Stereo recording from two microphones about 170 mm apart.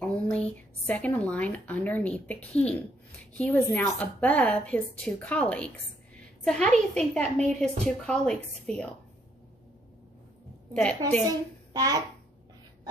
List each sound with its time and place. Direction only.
0.0 s a woman's voice: 5° left (ahead or behind)
10.7 s a woman's voice: 5° left (ahead or behind)
11.2 s a woman's voice: 20° right (ahead or behind)